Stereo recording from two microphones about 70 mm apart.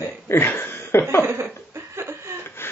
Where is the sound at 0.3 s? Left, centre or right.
Left.